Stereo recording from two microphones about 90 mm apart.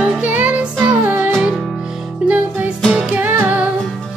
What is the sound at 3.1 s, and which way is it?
Music, 20° right (ahead or behind).